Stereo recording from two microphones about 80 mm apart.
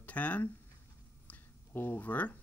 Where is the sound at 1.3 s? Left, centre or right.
Left.